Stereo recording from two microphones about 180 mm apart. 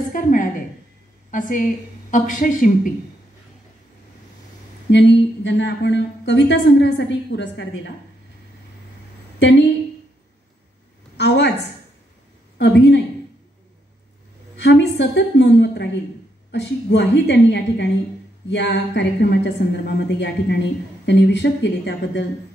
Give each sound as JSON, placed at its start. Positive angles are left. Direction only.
{"t": 0.1, "sound": "a sound", "side_deg": 50}
{"t": 2.0, "sound": "speech", "side_deg": 45}
{"t": 4.9, "sound": "a woman's voice", "side_deg": 80}
{"t": 11.1, "sound": "a woman's voice", "side_deg": 70}
{"t": 14.6, "sound": "a woman's voice", "side_deg": 70}